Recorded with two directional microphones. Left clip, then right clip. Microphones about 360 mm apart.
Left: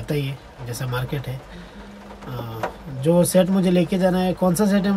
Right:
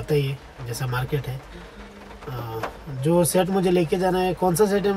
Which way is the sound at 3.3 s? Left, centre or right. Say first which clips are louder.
Left 2 dB; centre.